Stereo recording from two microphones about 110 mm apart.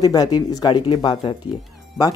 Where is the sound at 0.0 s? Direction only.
35° left (ahead or behind).